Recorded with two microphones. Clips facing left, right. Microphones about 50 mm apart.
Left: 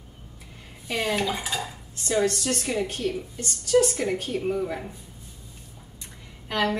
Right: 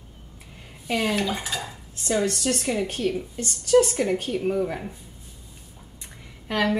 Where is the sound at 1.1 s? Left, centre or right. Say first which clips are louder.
Even; centre.